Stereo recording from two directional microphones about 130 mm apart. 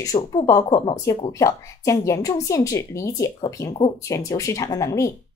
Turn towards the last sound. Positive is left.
turn(degrees=25)  # may be behind; listen again after turning